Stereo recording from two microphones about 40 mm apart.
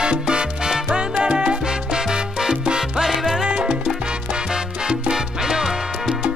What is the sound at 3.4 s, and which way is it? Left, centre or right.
Salsa music, right.